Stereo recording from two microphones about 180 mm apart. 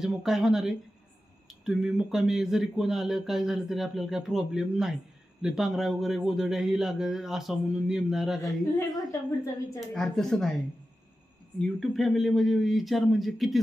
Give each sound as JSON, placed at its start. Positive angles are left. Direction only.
{"t": 0.0, "sound": "speech", "side_deg": 0}
{"t": 8.7, "sound": "a woman's voice", "side_deg": 20}
{"t": 9.8, "sound": "speech", "side_deg": 0}
{"t": 11.6, "sound": "speech", "side_deg": 0}